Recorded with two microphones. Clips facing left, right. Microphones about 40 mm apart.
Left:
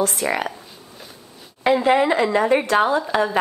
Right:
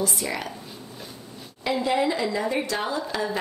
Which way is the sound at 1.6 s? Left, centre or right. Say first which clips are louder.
Left 7 dB; left.